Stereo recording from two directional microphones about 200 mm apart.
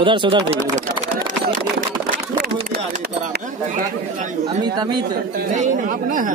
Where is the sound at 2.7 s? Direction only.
45° right (ahead or behind).